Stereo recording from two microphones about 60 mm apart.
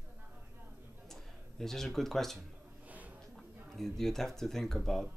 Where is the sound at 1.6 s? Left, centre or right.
Centre.